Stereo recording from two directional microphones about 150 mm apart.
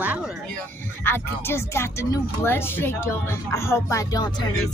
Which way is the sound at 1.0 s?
15° left (ahead or behind).